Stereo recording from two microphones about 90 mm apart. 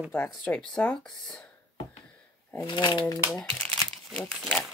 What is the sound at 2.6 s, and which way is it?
Speech, 55° left (ahead or behind).